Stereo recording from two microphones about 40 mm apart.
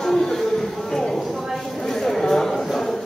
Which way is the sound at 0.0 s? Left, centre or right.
Centre.